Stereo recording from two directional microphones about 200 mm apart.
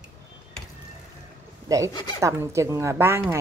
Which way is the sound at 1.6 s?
15° right (ahead or behind).